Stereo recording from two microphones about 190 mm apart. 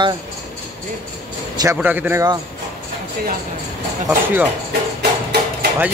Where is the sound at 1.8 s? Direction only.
10° right (ahead or behind).